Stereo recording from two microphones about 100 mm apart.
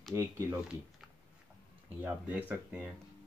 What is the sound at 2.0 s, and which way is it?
Speech, 15° right (ahead or behind).